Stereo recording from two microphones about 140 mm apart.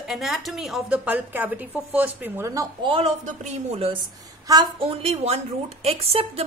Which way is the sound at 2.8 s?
40° right (ahead or behind).